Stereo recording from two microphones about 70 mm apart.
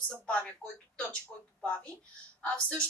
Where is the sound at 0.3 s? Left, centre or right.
Centre.